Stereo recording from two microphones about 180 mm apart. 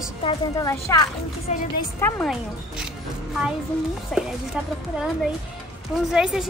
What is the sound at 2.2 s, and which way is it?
Speech, centre (ahead or behind).